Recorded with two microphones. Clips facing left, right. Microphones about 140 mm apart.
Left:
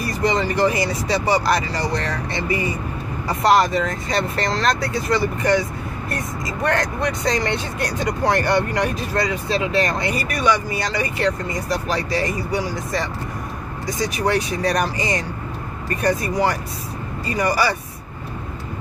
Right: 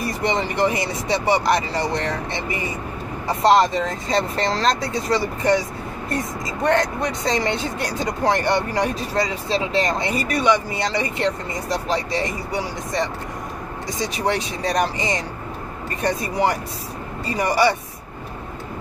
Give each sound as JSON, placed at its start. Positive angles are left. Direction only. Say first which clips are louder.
{"t": 0.0, "sound": "speech", "louder": "left 2 dB", "side_deg": -25}
{"t": 6.6, "sound": "speech", "louder": "right 2 dB", "side_deg": -25}